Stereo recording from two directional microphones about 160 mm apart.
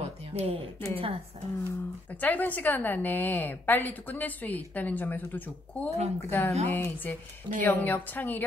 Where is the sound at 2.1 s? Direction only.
10° left (ahead or behind).